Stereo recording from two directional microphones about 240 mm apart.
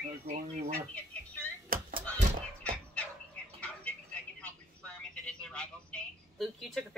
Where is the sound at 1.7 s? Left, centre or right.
Right.